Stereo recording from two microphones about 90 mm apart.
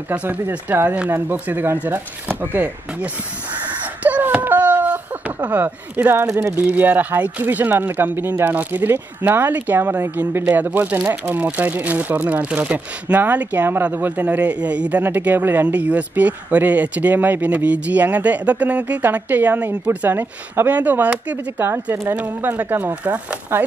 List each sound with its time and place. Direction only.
0.1 s speech: 15° right (ahead or behind)
4.0 s a sound: 15° right (ahead or behind)
6.2 s speech: 30° right (ahead or behind)